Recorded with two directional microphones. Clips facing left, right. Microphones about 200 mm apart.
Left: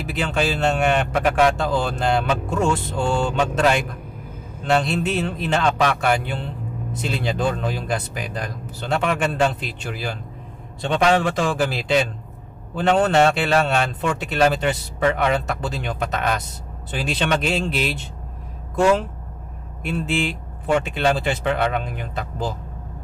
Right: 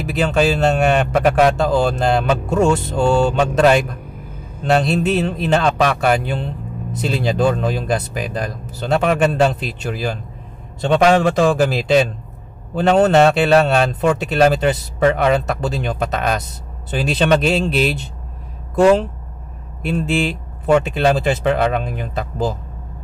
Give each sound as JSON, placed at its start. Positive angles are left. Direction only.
{"t": 0.0, "sound": "speech", "side_deg": -40}